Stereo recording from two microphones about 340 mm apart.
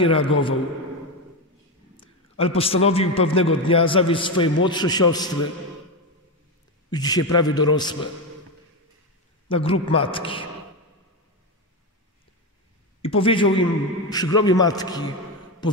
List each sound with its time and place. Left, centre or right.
0.0 s a man's voice: centre
2.0 s a man's voice: centre
6.9 s a man's voice: centre
9.5 s a man's voice: centre
13.0 s a man's voice: centre